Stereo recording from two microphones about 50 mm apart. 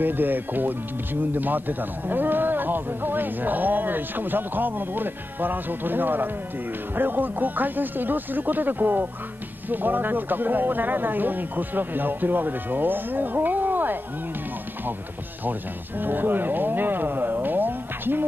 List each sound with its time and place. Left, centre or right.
0.0 s a man's voice: right
16.0 s speech: right